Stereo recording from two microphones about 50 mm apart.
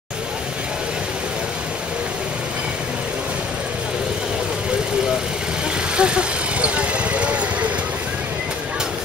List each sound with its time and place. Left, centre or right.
5.9 s vehicle: right